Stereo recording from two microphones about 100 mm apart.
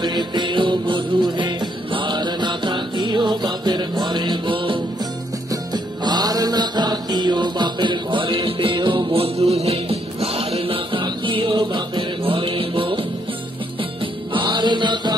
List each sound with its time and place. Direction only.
0.0 s music: 50° right (ahead or behind)
14.3 s music: 50° right (ahead or behind)